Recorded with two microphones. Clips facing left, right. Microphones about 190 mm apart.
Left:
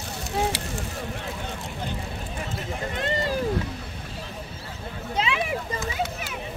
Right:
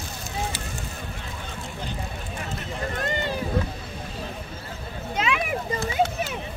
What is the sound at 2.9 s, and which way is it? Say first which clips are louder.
Run: left 2 dB; 30° left (ahead or behind).